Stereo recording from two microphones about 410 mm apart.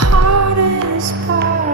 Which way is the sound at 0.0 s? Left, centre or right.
Right.